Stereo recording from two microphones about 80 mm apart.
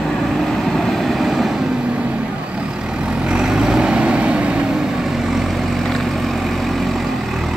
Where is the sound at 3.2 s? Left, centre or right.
Centre.